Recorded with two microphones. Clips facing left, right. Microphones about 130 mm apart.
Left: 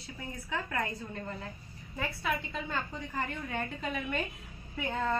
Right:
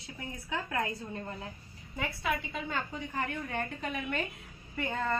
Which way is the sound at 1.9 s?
5° right (ahead or behind).